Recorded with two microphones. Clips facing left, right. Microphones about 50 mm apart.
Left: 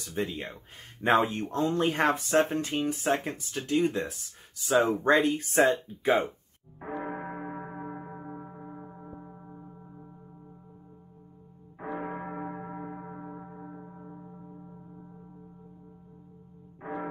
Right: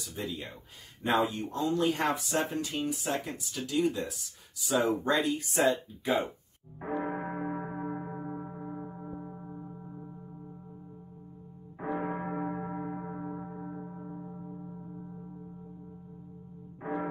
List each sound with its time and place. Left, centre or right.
0.1 s speech: left
6.8 s church bell: centre
11.8 s gong: centre
16.8 s music: centre